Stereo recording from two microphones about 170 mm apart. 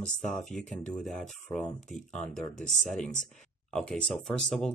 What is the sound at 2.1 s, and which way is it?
Speech, 5° left (ahead or behind).